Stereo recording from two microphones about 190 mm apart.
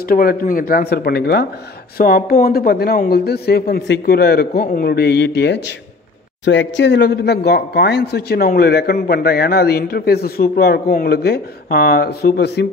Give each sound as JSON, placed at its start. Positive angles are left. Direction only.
{"t": 0.1, "sound": "speech", "side_deg": 50}